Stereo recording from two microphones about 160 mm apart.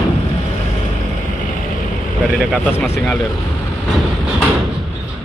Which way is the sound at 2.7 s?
15° left (ahead or behind).